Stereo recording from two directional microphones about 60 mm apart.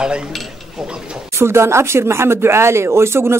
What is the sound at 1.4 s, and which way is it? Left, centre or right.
Speech, right.